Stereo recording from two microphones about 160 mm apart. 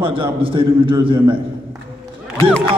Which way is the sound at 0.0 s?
35° right (ahead or behind).